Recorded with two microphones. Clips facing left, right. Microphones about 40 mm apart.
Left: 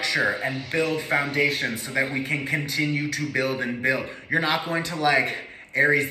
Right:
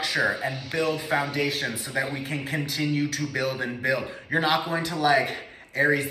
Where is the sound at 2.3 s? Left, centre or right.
Left.